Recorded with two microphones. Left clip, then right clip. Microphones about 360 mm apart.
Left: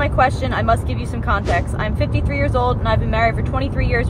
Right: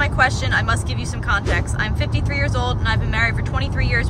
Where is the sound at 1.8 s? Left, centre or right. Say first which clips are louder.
Left 1 dB; centre.